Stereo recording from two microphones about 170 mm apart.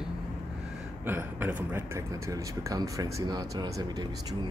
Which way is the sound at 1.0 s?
10° right (ahead or behind).